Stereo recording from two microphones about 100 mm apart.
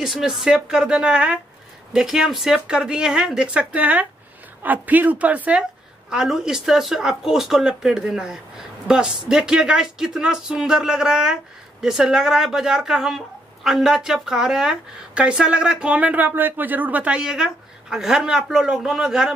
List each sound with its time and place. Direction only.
0.0 s a woman's voice: 5° right (ahead or behind)